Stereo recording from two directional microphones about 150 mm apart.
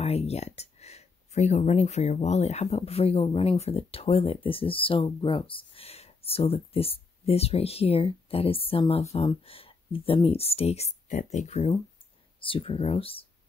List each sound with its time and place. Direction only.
0.0 s speech: 45° left (ahead or behind)